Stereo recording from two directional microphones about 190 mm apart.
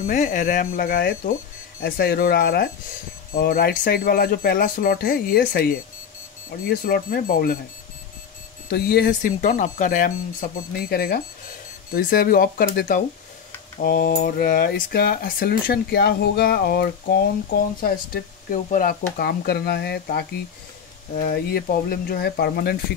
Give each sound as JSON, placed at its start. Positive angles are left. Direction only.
{"t": 0.0, "sound": "speech", "side_deg": 40}
{"t": 8.6, "sound": "speech", "side_deg": 55}